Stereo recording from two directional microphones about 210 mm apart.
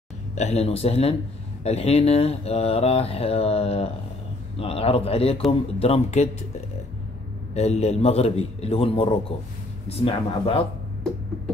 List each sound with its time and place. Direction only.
0.4 s speech: 30° left (ahead or behind)
7.5 s speech: 30° left (ahead or behind)